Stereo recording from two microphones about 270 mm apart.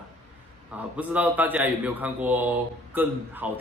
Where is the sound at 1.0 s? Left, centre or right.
Centre.